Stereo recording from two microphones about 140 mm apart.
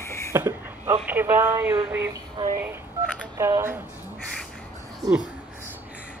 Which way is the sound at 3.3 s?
20° right (ahead or behind).